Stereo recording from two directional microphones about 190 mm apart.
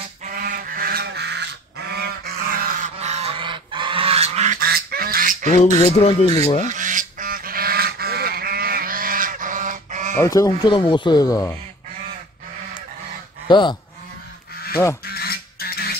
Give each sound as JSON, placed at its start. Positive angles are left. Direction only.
{"t": 0.4, "sound": "goose", "side_deg": -50}
{"t": 3.0, "sound": "goose", "side_deg": -35}
{"t": 4.6, "sound": "duck", "side_deg": -55}
{"t": 5.6, "sound": "a sound", "side_deg": 30}
{"t": 6.7, "sound": "goose", "side_deg": -45}
{"t": 10.1, "sound": "speech", "side_deg": 15}
{"t": 13.5, "sound": "speech", "side_deg": 25}
{"t": 15.0, "sound": "a sound", "side_deg": 55}